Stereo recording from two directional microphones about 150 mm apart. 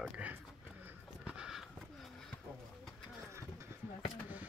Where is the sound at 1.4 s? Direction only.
5° right (ahead or behind).